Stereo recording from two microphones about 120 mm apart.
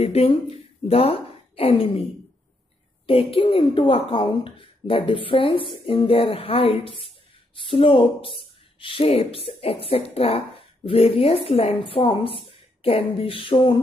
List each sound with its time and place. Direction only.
0.0 s a woman's voice: 60° left (ahead or behind)
3.1 s speech: 50° left (ahead or behind)